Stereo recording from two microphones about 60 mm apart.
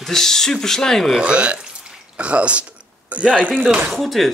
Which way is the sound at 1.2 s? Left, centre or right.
Centre.